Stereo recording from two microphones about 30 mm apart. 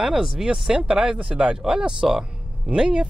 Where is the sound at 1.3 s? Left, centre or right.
Right.